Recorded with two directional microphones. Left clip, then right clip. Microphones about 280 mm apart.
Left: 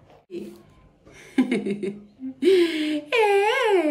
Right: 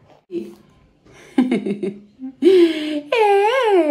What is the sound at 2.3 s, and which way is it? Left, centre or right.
Speech, centre.